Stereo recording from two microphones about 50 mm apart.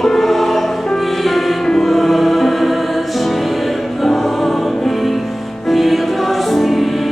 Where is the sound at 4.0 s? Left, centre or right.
Centre.